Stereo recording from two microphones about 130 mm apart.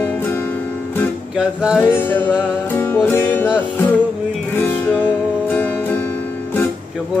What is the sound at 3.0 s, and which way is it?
Music, 15° left (ahead or behind).